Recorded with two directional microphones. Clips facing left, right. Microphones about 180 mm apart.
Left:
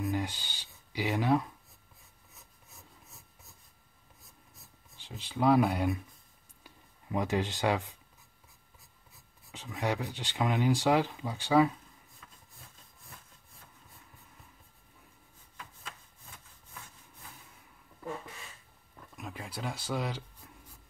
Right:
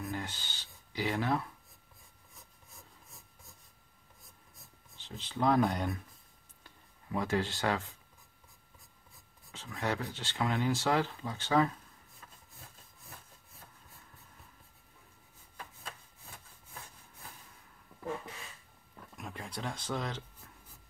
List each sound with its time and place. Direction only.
0.0 s speech: 15° left (ahead or behind)
4.9 s speech: 10° left (ahead or behind)
7.1 s speech: 20° left (ahead or behind)
9.5 s speech: 15° left (ahead or behind)
12.2 s a sound: 40° right (ahead or behind)
18.9 s speech: centre (ahead or behind)